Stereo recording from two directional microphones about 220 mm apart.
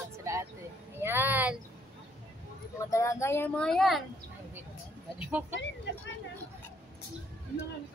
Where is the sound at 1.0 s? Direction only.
10° right (ahead or behind).